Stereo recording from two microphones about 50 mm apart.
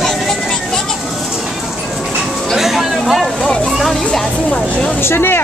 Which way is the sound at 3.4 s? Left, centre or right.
Centre.